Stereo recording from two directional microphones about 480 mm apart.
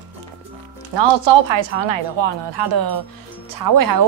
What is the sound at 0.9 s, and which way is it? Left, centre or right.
A woman's voice, right.